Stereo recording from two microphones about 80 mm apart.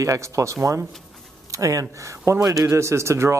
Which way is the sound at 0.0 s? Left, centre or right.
Right.